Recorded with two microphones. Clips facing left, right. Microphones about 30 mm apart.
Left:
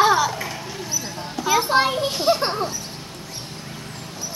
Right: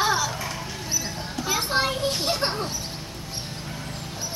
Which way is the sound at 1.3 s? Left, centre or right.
Centre.